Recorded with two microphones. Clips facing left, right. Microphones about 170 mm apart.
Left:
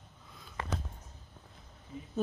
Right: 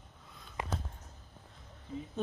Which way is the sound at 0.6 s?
15° right (ahead or behind).